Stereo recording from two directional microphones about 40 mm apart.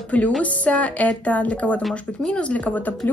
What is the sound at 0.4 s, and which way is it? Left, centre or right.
A woman's voice, left.